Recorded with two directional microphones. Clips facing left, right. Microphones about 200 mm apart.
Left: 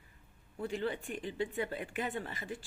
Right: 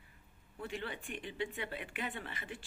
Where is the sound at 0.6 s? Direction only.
40° left (ahead or behind).